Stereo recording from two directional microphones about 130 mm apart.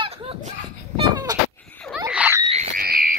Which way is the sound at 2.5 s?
75° right (ahead or behind).